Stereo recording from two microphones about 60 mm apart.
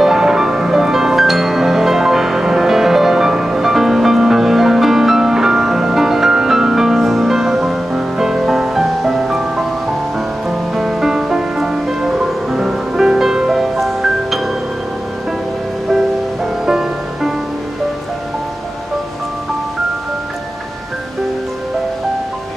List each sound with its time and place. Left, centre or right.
0.0 s music: centre
16.6 s music: centre